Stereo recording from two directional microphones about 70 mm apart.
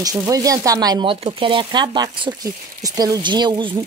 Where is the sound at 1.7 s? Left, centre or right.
Right.